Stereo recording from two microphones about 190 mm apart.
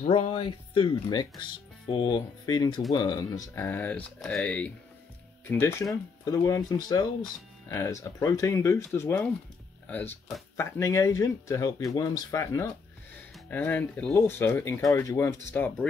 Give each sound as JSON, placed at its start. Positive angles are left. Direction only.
{"t": 0.0, "sound": "speech", "side_deg": 35}